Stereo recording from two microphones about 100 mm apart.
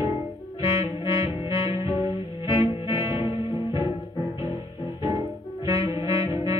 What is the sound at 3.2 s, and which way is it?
Music, 40° right (ahead or behind).